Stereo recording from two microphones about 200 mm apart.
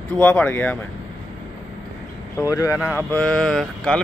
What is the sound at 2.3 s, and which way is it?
Speech, 15° left (ahead or behind).